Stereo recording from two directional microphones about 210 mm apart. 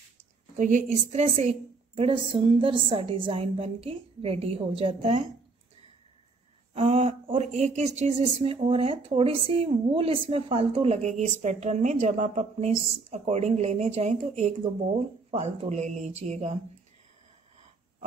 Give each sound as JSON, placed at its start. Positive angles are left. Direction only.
{"t": 0.6, "sound": "a woman's voice", "side_deg": -35}
{"t": 6.7, "sound": "a woman's voice", "side_deg": -30}